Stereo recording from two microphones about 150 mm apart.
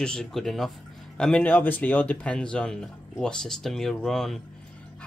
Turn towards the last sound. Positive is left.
turn(degrees=0)  # may be behind; listen again after turning